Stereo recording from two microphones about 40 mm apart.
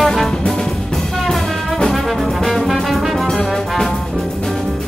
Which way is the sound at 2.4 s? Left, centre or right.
Centre.